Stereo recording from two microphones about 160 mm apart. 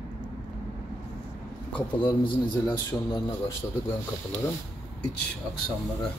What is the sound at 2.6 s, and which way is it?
Speech, 25° left (ahead or behind).